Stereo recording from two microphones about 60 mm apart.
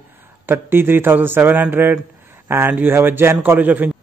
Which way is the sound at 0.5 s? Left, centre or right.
Right.